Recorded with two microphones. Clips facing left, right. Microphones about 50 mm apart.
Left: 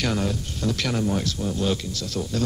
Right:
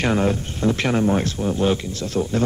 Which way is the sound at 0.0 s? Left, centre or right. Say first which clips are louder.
Right 6 dB; right.